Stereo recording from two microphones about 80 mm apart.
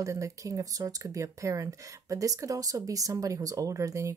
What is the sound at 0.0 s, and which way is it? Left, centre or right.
Speech, right.